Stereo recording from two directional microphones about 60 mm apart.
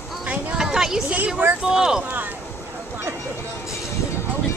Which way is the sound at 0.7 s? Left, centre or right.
Centre.